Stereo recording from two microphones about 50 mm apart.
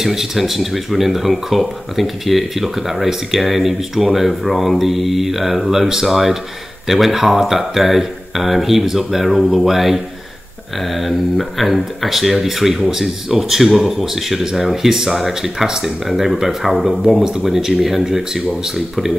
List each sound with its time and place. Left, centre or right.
0.0 s speech: centre